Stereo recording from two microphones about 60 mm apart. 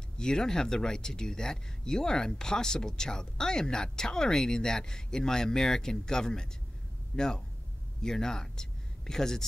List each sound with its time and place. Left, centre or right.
0.2 s speech: centre